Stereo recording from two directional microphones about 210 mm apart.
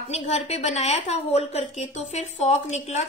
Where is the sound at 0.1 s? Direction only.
30° left (ahead or behind).